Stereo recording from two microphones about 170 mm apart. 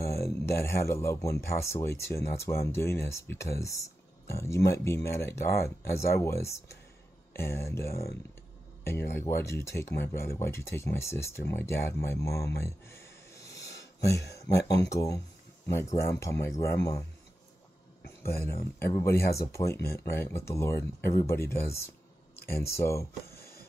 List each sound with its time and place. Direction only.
0.3 s speech: 15° left (ahead or behind)
12.5 s a sound: 15° left (ahead or behind)
14.3 s speech: 20° left (ahead or behind)
18.5 s speech: 60° left (ahead or behind)
18.9 s speech: 15° left (ahead or behind)
23.3 s a sound: 65° left (ahead or behind)